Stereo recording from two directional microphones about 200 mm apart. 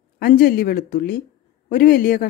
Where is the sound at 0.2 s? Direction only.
45° left (ahead or behind).